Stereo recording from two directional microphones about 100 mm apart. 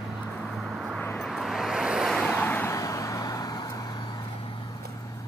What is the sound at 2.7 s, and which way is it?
Vehicle, 35° left (ahead or behind).